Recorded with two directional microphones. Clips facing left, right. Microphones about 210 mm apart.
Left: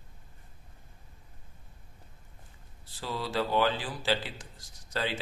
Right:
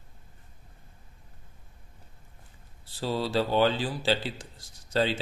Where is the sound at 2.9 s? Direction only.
30° right (ahead or behind).